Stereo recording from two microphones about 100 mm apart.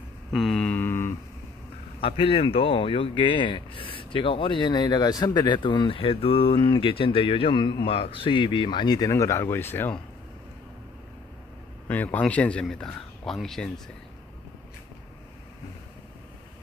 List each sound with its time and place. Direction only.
0.3 s mantra: centre (ahead or behind)
0.7 s a sound: 20° left (ahead or behind)
2.0 s speech: 65° left (ahead or behind); by 9.9 s 20° left (ahead or behind)
11.9 s speech: 15° left (ahead or behind)